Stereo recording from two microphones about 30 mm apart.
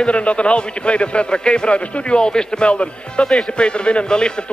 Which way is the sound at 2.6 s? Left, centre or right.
Left.